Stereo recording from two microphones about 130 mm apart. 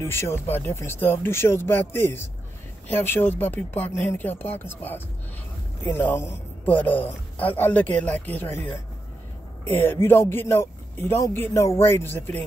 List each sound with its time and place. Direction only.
0.0 s a man's voice: 20° left (ahead or behind)